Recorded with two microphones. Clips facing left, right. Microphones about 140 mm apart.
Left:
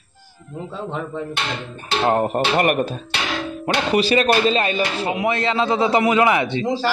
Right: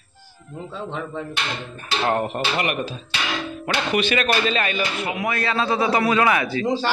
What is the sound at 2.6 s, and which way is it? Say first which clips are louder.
Speech: left 8 dB; 50° left (ahead or behind).